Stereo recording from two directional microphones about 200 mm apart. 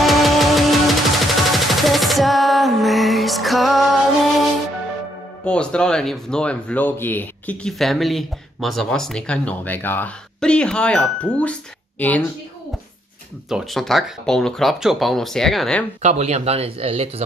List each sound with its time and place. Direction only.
0.0 s music: centre (ahead or behind)
5.4 s speech: 5° left (ahead or behind)
13.5 s speech: centre (ahead or behind)
16.0 s speech: 35° right (ahead or behind)